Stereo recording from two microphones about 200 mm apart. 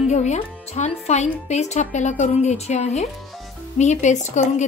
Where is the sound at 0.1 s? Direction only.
35° left (ahead or behind).